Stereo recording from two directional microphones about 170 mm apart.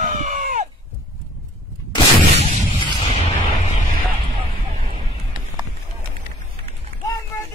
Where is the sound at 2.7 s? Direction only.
35° left (ahead or behind).